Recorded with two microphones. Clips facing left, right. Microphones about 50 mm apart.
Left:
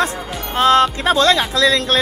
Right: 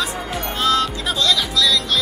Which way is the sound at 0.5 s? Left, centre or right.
Left.